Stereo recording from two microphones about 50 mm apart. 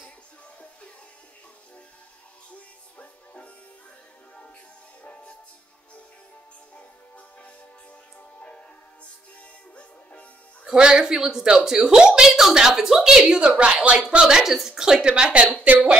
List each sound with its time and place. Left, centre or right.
5.0 s music: left
8.2 s music: left
10.6 s a woman's voice: centre